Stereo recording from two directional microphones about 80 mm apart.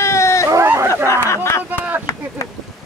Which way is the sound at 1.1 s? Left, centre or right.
Left.